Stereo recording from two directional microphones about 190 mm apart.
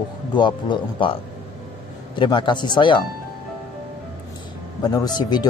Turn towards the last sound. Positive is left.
turn(degrees=20)  # may be behind; listen again after turning